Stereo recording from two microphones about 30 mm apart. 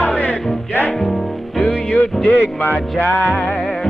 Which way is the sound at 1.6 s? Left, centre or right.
Left.